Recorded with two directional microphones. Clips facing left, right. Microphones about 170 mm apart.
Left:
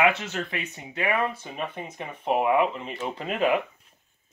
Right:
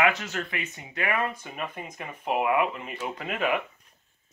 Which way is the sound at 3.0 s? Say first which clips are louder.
Left 4 dB; 35° left (ahead or behind).